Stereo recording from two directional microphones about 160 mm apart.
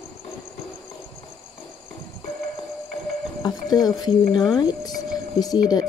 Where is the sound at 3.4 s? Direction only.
25° left (ahead or behind).